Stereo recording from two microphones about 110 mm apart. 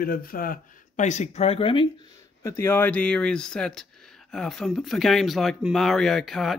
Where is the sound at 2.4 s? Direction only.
25° left (ahead or behind).